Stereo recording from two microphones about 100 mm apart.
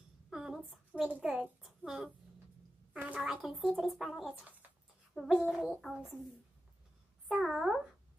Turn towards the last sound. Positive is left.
turn(degrees=0)  # may be behind; listen again after turning